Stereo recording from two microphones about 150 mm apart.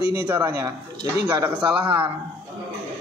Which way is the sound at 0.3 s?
15° right (ahead or behind).